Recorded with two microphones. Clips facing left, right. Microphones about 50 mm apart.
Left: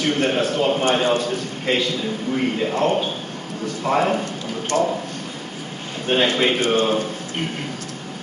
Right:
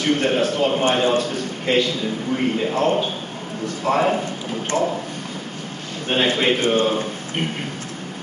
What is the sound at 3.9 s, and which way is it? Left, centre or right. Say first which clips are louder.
Speech: even; right.